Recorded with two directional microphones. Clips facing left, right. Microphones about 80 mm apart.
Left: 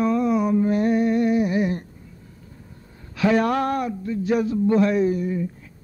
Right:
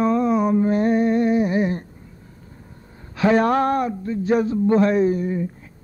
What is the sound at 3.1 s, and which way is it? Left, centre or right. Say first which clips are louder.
Speech: right 3 dB; right.